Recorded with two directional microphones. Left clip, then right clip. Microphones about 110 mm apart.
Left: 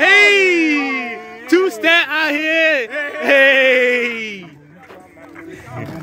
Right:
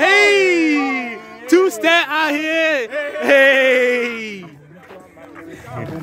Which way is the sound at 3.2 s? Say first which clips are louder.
Even; 45° right (ahead or behind).